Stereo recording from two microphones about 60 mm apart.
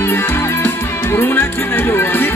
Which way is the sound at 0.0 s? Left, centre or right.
Left.